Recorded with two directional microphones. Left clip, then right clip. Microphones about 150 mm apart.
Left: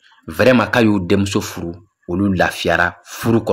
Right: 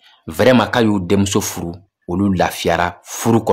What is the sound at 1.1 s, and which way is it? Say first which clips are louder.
Speech: right 2 dB; 20° right (ahead or behind).